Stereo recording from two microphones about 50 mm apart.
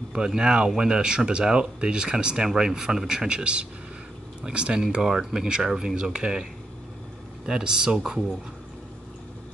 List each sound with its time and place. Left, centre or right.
0.1 s speech: centre
7.4 s speech: centre